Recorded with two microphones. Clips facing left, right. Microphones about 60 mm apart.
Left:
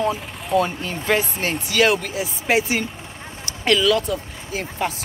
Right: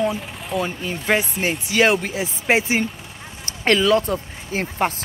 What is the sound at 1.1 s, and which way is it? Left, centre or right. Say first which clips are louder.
Speech: right 1 dB; centre.